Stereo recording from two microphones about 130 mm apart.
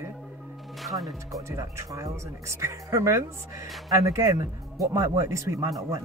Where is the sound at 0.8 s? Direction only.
Centre (ahead or behind).